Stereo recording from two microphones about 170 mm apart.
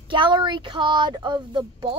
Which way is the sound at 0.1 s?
25° right (ahead or behind).